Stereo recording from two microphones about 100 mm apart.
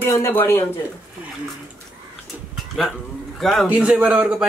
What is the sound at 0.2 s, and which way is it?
Speech, 20° left (ahead or behind).